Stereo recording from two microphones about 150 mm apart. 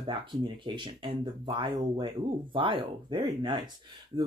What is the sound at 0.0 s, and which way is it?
Speech, 30° right (ahead or behind).